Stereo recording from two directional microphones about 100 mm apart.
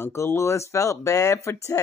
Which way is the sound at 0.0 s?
25° left (ahead or behind).